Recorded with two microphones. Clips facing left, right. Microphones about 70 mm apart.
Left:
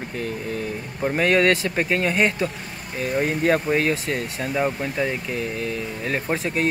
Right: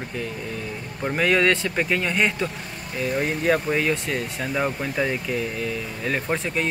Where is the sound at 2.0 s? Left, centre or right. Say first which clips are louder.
Left 2 dB; centre.